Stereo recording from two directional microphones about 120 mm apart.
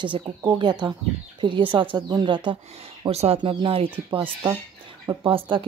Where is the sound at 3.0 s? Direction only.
60° right (ahead or behind).